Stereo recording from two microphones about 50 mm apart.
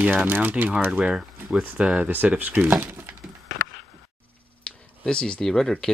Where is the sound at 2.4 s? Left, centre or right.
Right.